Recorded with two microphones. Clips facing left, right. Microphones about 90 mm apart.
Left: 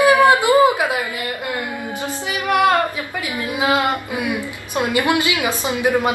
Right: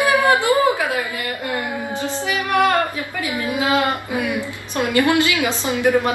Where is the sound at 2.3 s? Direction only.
15° left (ahead or behind).